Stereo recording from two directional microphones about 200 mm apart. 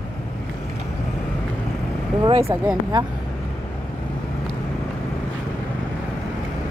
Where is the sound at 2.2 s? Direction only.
25° right (ahead or behind).